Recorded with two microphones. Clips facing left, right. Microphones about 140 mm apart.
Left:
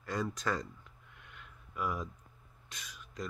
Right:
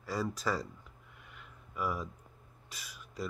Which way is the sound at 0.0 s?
5° right (ahead or behind).